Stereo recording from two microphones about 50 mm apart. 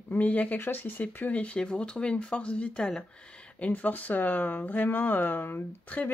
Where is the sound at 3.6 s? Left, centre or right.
Left.